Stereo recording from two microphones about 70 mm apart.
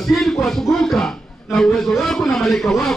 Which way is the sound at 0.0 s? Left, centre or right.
Centre.